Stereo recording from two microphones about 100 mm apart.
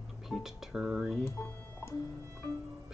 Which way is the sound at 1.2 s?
25° left (ahead or behind).